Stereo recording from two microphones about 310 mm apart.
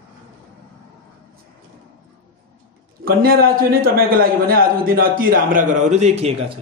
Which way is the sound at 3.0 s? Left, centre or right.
Right.